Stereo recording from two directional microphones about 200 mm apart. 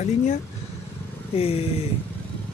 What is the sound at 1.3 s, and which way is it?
Speech, 30° left (ahead or behind).